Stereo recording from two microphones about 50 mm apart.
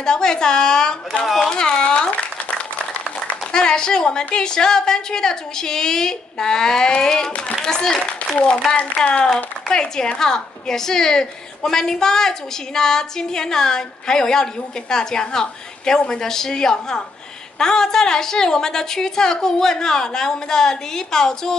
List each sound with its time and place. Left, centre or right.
0.0 s a woman's voice: centre
3.5 s a woman's voice: centre